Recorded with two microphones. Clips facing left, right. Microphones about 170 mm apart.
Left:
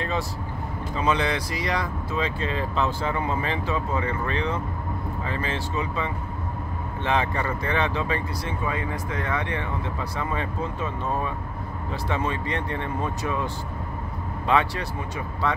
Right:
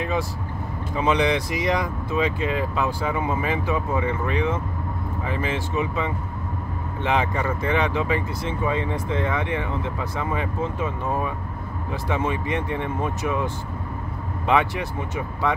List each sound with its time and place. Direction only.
0.9 s speech: 15° right (ahead or behind)
14.5 s speech: 15° right (ahead or behind)